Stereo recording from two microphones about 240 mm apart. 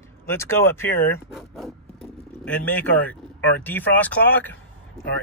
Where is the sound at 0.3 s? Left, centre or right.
Centre.